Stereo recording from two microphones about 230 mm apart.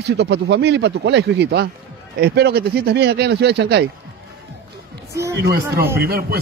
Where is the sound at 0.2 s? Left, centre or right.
Right.